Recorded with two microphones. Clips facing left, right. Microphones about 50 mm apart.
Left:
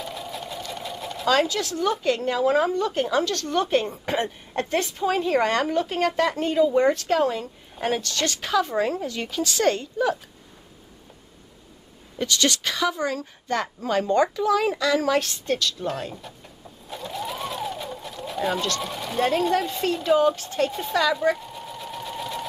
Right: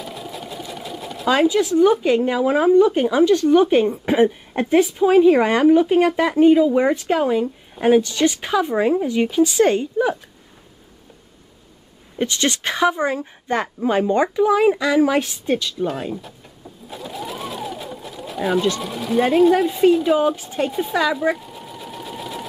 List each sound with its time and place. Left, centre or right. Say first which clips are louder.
0.0 s sewing machine: right 1 dB; centre
1.3 s speech: right 7 dB; centre
12.2 s a woman's voice: right 2 dB; right
15.8 s sewing machine: right 5 dB; centre
18.8 s speech: right 5 dB; centre